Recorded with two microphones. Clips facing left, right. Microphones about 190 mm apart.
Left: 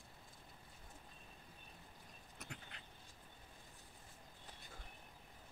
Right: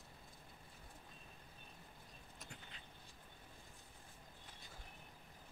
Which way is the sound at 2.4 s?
70° left (ahead or behind).